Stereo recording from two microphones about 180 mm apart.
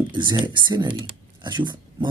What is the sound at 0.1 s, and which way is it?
Speech, 25° right (ahead or behind).